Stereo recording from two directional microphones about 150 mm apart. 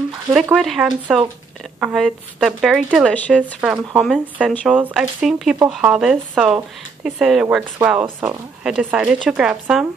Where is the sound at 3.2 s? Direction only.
10° left (ahead or behind); by 8.1 s 10° right (ahead or behind).